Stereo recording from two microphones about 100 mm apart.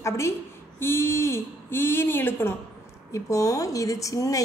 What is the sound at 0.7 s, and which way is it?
A woman's voice, 25° left (ahead or behind).